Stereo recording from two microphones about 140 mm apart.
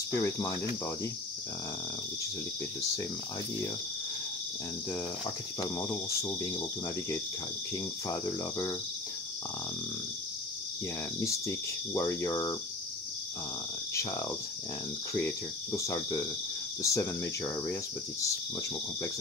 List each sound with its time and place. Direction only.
0.1 s speech: 20° left (ahead or behind)
5.6 s speech: 25° left (ahead or behind)
11.1 s speech: 20° left (ahead or behind)
15.1 s speech: 20° left (ahead or behind)